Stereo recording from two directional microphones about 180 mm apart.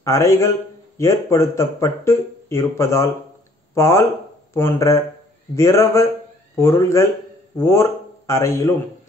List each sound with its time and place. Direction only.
0.0 s a man's voice: 15° left (ahead or behind)